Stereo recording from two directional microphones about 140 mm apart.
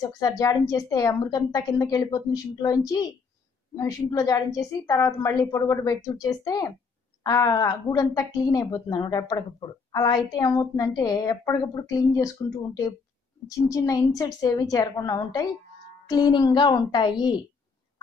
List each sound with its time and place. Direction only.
0.2 s a woman's voice: 25° left (ahead or behind)